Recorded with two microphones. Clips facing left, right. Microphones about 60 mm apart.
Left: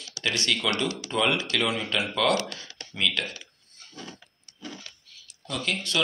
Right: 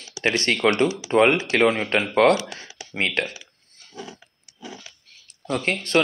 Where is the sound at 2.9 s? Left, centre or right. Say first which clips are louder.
Right 4 dB; right.